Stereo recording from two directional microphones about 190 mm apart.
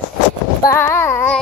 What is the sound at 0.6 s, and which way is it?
Speech, 10° left (ahead or behind).